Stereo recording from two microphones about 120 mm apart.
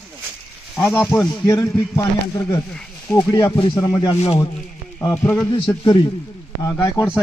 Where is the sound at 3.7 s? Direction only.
35° left (ahead or behind).